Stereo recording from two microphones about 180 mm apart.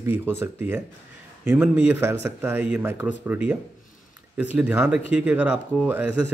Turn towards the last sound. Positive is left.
turn(degrees=-5)  # may be behind; listen again after turning